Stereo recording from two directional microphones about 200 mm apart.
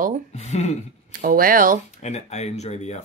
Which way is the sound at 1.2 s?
45° right (ahead or behind).